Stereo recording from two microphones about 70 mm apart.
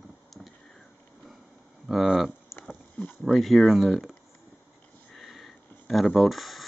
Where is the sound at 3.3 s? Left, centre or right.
Centre.